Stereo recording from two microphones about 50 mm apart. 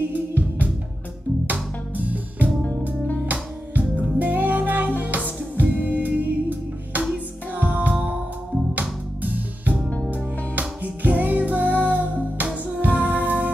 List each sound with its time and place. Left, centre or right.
0.0 s music: right
4.2 s music: right